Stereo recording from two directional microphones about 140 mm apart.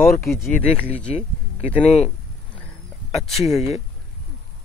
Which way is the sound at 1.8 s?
50° left (ahead or behind).